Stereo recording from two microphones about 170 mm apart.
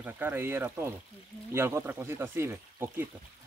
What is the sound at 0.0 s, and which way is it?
Speech, 10° right (ahead or behind).